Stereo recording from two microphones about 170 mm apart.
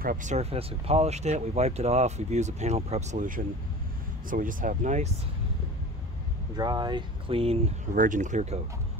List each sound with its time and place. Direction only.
0.0 s speech: 50° right (ahead or behind)
6.5 s speech: 25° right (ahead or behind)
7.9 s speech: 50° right (ahead or behind)